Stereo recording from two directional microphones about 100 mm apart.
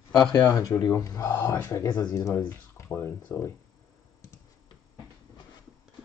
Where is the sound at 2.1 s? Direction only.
30° left (ahead or behind).